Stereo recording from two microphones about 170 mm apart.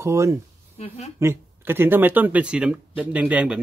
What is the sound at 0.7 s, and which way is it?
Speech, 40° left (ahead or behind).